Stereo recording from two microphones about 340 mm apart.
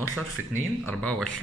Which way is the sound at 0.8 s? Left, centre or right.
Centre.